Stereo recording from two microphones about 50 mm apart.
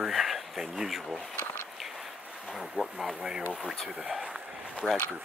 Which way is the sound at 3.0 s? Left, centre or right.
Centre.